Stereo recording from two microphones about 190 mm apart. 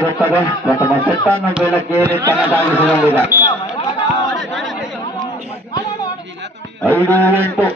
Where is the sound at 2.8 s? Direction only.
10° right (ahead or behind).